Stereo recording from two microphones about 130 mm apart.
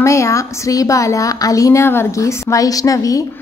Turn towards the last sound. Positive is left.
turn(degrees=25)  # may be behind; listen again after turning